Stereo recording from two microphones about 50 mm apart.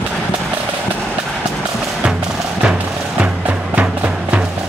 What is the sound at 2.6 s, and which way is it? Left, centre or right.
Music, right.